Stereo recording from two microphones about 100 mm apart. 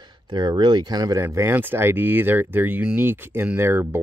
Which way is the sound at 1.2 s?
25° right (ahead or behind).